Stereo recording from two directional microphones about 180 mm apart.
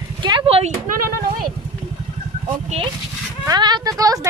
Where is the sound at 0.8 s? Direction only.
50° right (ahead or behind).